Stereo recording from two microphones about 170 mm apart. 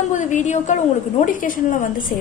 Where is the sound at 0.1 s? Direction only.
45° left (ahead or behind).